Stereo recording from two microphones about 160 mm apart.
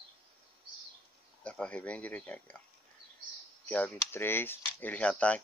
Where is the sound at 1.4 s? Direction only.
5° left (ahead or behind).